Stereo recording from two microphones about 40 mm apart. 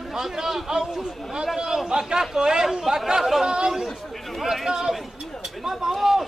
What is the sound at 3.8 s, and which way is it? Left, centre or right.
Chatter, centre.